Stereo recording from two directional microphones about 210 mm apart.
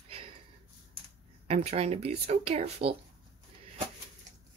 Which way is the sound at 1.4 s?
30° right (ahead or behind).